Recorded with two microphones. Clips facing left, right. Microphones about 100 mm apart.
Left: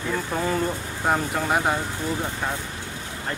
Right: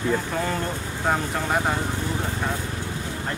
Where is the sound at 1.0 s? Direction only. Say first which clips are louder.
Left 1 dB; 5° left (ahead or behind).